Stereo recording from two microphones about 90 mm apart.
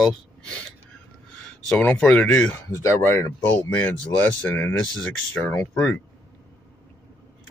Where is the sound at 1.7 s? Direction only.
10° left (ahead or behind).